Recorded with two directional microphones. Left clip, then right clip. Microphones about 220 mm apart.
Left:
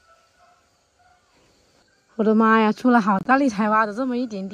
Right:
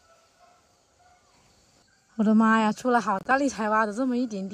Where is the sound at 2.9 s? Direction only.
10° right (ahead or behind).